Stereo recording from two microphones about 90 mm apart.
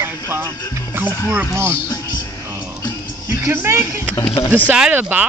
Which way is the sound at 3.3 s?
30° right (ahead or behind).